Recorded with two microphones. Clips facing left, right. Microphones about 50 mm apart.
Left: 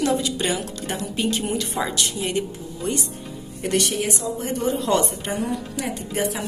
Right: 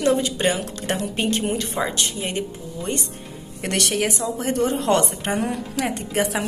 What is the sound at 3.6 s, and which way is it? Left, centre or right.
A woman's voice, right.